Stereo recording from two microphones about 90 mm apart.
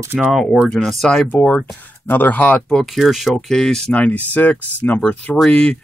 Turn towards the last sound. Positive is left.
turn(degrees=15)  # may be behind; listen again after turning